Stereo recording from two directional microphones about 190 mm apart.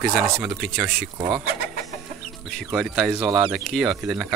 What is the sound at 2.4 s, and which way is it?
Speech, centre (ahead or behind).